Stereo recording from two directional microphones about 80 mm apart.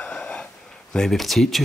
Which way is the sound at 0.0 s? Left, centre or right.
Centre.